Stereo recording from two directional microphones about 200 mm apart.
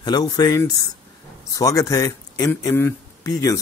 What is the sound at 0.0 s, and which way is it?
Speech, 20° left (ahead or behind).